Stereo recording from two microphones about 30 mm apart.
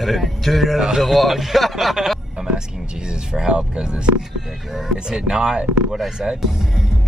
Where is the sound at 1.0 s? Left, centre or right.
Centre.